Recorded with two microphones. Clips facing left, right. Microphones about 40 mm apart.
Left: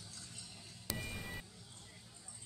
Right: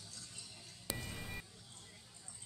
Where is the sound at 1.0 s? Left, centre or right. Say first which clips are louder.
Left 1 dB; centre.